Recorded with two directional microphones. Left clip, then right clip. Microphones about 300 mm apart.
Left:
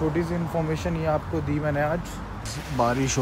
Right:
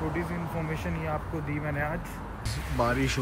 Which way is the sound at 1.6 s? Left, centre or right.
Centre.